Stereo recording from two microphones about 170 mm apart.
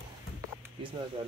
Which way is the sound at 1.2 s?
30° right (ahead or behind).